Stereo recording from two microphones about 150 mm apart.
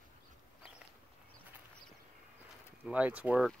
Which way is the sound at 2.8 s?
10° right (ahead or behind).